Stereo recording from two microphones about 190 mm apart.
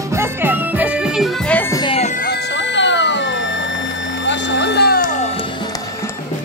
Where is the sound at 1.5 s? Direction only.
10° left (ahead or behind).